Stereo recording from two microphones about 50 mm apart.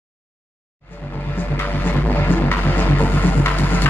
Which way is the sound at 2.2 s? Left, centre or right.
Left.